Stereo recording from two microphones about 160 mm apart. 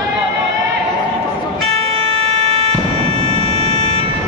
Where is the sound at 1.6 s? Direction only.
40° right (ahead or behind).